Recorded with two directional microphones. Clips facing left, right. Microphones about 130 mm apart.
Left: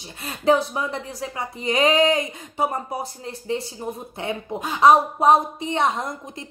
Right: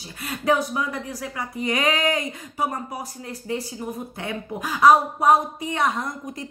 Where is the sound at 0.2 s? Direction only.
25° left (ahead or behind).